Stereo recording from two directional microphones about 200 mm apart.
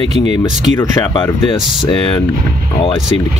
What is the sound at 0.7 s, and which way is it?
Speech, 15° left (ahead or behind).